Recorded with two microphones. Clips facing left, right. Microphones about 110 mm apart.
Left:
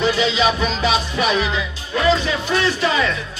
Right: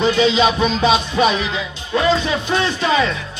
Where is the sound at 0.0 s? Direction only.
20° right (ahead or behind).